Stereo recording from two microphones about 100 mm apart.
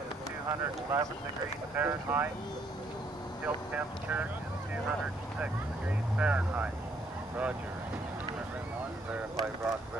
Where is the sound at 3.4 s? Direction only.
15° right (ahead or behind).